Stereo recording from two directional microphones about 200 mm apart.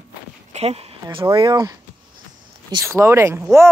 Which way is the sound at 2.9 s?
15° right (ahead or behind).